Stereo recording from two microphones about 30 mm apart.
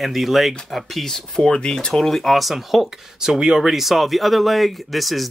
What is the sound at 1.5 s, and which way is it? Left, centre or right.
Speech, left.